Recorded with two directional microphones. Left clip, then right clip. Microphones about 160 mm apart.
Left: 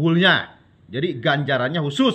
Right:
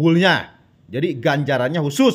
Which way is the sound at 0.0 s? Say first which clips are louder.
Right 1 dB; 90° right.